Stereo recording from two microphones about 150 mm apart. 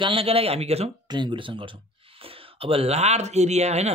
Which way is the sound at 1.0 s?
30° right (ahead or behind).